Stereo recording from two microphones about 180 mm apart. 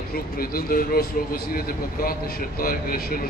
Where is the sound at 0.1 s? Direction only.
55° left (ahead or behind).